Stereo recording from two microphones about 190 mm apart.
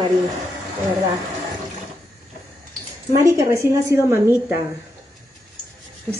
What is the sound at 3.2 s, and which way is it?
Speech, 15° right (ahead or behind).